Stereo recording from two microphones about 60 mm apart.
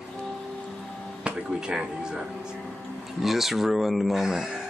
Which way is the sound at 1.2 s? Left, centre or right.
Centre.